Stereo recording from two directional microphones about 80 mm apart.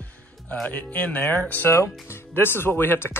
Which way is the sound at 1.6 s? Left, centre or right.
Left.